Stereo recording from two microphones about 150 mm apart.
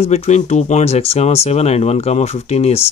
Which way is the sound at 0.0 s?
45° left (ahead or behind).